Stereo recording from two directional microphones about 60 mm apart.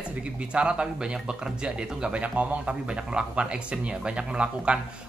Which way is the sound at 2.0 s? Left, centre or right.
Centre.